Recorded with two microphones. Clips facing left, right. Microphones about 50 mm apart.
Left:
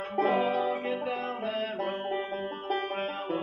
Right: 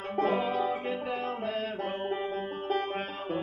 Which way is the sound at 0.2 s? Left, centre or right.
Centre.